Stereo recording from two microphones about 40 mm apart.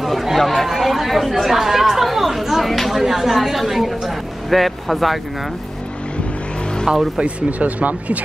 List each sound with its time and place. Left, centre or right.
0.0 s chatter: centre
7.2 s speech: right